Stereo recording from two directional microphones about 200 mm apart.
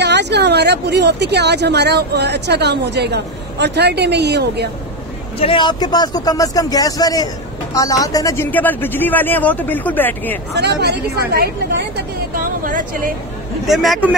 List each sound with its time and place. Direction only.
0.0 s speech: 60° right (ahead or behind)
5.4 s speech: 25° left (ahead or behind); by 10.4 s 10° left (ahead or behind)
10.5 s a woman's voice: 55° right (ahead or behind)
13.7 s speech: centre (ahead or behind)